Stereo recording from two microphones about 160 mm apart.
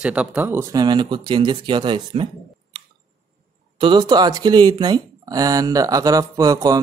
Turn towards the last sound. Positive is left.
turn(degrees=-20)  # may be behind; listen again after turning